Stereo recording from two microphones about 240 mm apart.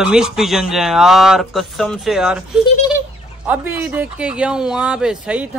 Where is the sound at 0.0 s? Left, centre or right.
Centre.